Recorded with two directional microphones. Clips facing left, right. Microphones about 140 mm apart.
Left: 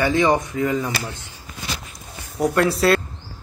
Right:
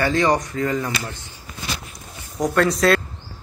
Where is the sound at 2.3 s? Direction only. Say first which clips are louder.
Even; 10° left (ahead or behind).